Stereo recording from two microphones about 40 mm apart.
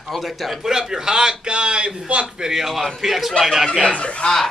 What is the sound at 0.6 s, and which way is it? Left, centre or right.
A man's voice, centre.